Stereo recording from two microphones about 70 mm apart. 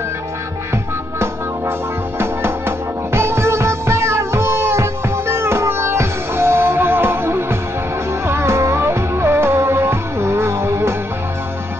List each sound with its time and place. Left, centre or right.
2.1 s music: right